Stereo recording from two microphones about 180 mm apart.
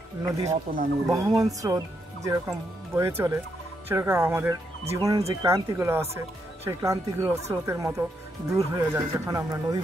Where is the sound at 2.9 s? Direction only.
15° right (ahead or behind).